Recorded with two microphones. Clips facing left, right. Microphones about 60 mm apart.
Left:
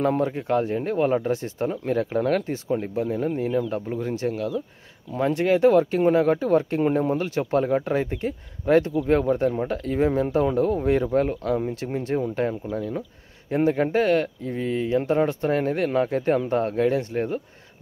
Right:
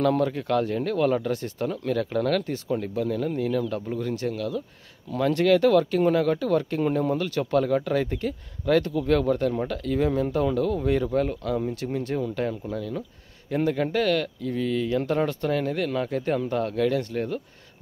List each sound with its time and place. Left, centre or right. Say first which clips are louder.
0.0 s speech: even; left
15.5 s speech: left 3 dB; left